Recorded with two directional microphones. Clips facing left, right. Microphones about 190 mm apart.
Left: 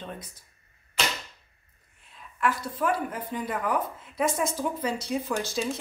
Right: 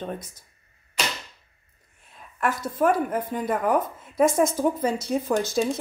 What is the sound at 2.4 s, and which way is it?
A woman's voice, 45° right (ahead or behind).